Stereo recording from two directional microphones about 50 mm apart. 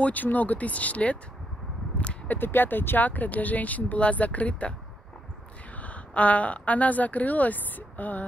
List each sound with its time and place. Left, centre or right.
0.0 s a woman's voice: left
2.0 s a sound: left
2.3 s speech: left
3.1 s a woman's voice: left
5.8 s a woman's voice: left